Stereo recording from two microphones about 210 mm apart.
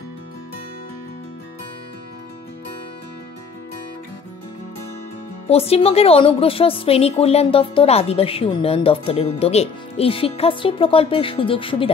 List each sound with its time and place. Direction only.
5.5 s a woman's voice: 30° left (ahead or behind)